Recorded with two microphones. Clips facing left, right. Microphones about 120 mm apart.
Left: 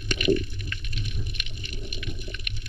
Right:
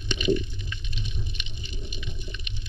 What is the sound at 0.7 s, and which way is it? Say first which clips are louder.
Water: left 1 dB; 60° left (ahead or behind).